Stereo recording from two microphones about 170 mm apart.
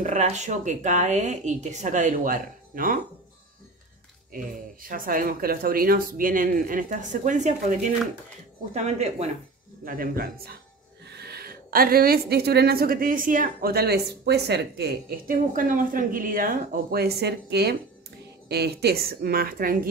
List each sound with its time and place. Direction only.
0.0 s speech: 45° right (ahead or behind)
4.3 s a woman's voice: 55° right (ahead or behind); by 9.3 s 40° right (ahead or behind)
9.8 s a woman's voice: 60° right (ahead or behind)